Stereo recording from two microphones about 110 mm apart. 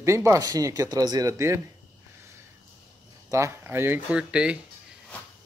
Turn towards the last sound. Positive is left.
turn(degrees=-10)  # may be behind; listen again after turning